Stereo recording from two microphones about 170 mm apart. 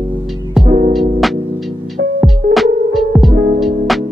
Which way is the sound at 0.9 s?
Centre (ahead or behind).